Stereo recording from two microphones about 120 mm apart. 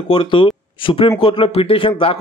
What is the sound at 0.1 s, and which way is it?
A man's voice, 45° left (ahead or behind).